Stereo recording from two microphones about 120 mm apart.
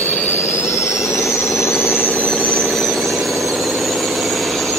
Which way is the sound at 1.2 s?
25° left (ahead or behind).